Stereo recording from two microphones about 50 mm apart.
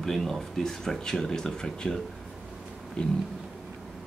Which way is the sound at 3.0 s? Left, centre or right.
Centre.